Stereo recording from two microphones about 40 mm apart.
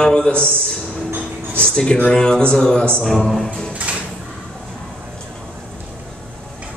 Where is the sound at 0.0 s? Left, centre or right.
Centre.